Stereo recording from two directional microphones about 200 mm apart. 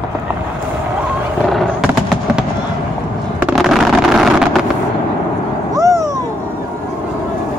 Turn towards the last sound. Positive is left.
turn(degrees=-15)  # may be behind; listen again after turning